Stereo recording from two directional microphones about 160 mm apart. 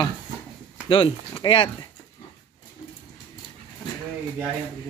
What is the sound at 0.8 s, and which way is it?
Speech, 35° left (ahead or behind).